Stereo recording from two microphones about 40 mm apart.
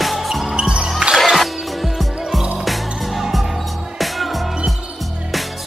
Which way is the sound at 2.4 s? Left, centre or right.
Right.